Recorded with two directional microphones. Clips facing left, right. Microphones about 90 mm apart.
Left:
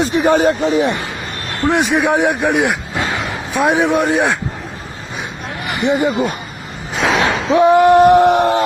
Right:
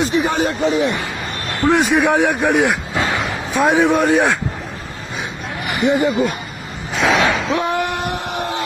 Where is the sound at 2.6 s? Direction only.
15° left (ahead or behind).